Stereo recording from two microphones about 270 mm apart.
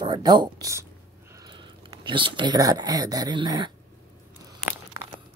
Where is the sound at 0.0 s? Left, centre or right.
Centre.